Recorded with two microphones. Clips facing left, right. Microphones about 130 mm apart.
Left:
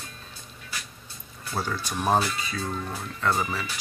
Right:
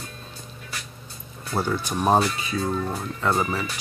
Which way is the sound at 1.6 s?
15° right (ahead or behind).